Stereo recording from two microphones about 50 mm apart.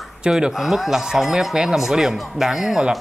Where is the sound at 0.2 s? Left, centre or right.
Centre.